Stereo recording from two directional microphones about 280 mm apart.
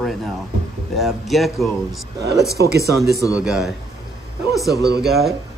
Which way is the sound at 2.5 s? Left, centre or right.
Right.